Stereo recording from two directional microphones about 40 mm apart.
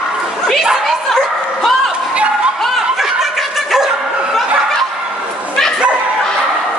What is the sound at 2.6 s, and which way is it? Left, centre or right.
Snicker, centre.